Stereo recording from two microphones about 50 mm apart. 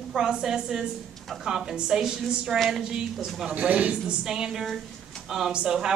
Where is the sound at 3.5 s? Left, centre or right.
Right.